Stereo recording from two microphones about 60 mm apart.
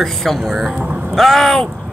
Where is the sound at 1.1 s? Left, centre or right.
Centre.